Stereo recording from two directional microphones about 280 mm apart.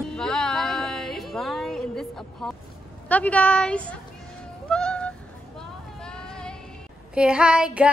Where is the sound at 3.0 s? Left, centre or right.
Centre.